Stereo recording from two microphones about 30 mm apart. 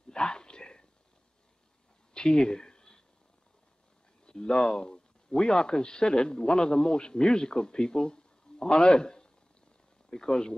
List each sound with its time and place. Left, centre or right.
0.1 s whispering: left
2.1 s a sound: left
4.3 s speech: left